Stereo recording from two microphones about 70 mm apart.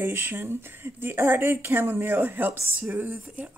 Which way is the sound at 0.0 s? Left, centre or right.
Right.